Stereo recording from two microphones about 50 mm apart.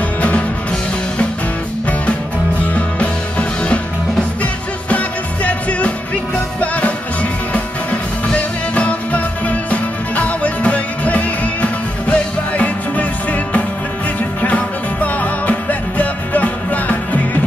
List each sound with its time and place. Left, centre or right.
2.6 s music: left